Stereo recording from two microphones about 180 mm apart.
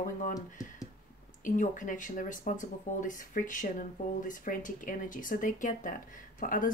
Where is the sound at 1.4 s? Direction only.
45° left (ahead or behind).